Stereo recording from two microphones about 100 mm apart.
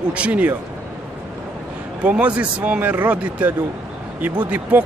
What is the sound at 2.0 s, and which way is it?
Speech, 15° right (ahead or behind).